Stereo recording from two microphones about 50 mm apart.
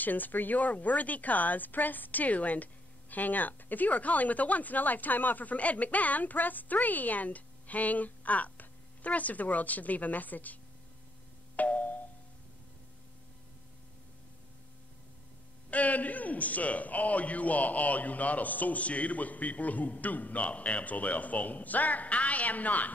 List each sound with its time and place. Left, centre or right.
0.0 s speech: left
11.5 s music: left
15.7 s speech: left